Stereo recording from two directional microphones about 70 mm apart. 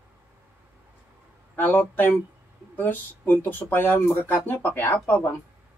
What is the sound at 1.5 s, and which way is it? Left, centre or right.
Speech, left.